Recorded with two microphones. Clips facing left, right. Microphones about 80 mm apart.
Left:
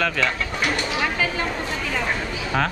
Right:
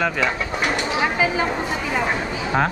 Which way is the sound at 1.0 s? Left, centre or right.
Centre.